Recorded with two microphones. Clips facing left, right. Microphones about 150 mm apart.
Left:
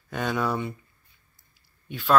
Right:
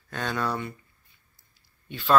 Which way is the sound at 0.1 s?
10° left (ahead or behind).